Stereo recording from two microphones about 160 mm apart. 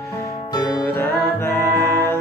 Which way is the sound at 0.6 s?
20° left (ahead or behind).